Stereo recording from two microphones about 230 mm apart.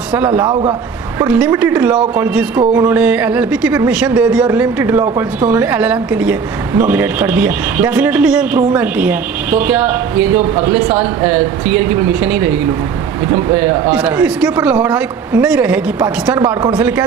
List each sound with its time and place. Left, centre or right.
0.5 s speech: right
1.2 s speech: centre
13.6 s speech: centre
16.3 s speech: centre